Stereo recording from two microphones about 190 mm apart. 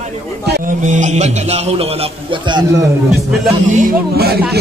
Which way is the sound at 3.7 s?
50° right (ahead or behind).